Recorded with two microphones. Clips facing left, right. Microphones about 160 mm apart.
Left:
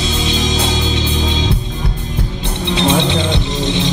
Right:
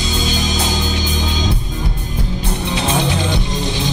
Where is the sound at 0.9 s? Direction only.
25° left (ahead or behind).